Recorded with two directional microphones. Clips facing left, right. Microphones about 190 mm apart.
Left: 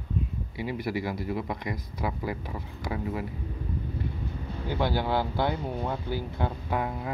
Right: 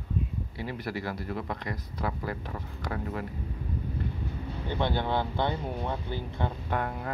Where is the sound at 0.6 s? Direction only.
10° left (ahead or behind).